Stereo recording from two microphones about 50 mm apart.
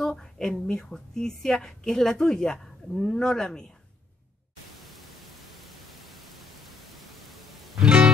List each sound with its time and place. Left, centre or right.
0.1 s speech: centre
4.8 s pink noise: centre
7.8 s music: centre